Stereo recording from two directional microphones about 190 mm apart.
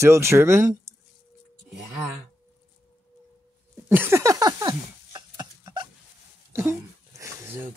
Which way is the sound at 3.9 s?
10° right (ahead or behind).